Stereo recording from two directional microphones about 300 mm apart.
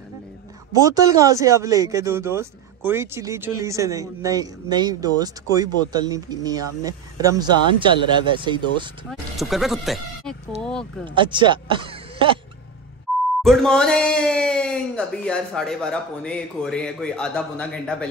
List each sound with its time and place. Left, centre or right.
0.7 s speech: centre
9.1 s speech: centre
11.1 s speech: centre
13.4 s speech: centre